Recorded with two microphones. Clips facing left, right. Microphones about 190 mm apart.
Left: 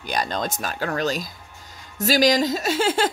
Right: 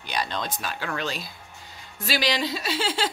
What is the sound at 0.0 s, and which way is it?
Speech, 45° left (ahead or behind).